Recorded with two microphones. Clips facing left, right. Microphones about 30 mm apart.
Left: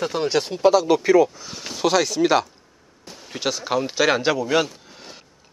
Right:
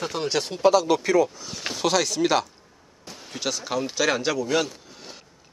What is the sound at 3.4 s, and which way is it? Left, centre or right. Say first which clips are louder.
Speech: left 4 dB; centre.